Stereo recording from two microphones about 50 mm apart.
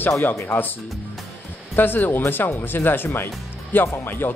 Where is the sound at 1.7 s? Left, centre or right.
Left.